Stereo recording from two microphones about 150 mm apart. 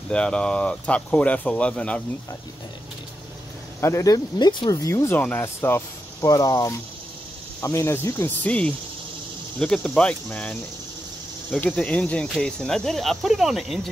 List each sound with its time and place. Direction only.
0.1 s speech: 5° left (ahead or behind)
3.8 s speech: 20° left (ahead or behind); by 13.7 s centre (ahead or behind)